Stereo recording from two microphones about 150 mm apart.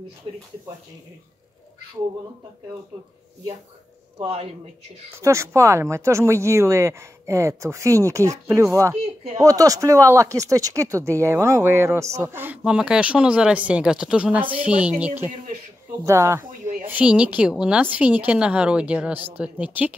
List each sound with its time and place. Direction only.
0.3 s speech: 30° right (ahead or behind)
4.2 s speech: 40° right (ahead or behind)
5.2 s speech: 20° right (ahead or behind)